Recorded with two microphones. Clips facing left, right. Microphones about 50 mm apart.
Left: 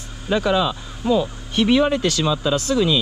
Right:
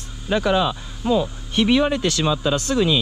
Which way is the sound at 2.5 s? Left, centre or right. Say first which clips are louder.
Left 1 dB; right.